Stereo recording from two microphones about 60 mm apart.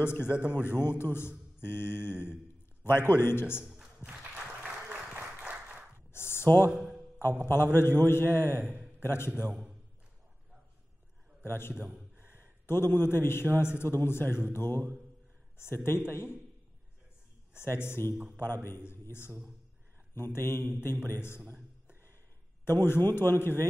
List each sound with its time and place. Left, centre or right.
0.0 s a man's voice: left
3.6 s a sound: centre
4.4 s applause: centre
6.1 s a sound: left
6.7 s speech: centre
7.4 s a man's voice: left
9.3 s a man's voice: centre
11.4 s a man's voice: left
11.7 s a man's voice: centre
12.3 s a man's voice: left
17.6 s a man's voice: left
22.7 s a man's voice: left